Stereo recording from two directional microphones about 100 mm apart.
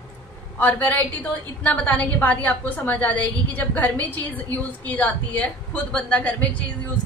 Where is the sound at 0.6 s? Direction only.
15° left (ahead or behind).